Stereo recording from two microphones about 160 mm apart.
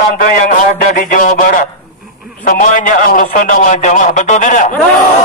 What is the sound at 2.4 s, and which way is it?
A man's voice, 55° left (ahead or behind).